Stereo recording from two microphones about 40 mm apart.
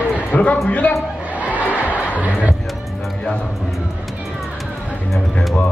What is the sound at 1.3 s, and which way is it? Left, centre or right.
Crowd, right.